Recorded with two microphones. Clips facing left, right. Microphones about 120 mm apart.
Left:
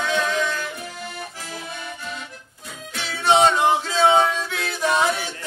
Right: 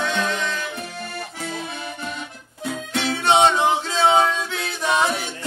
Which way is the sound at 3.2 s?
Centre (ahead or behind).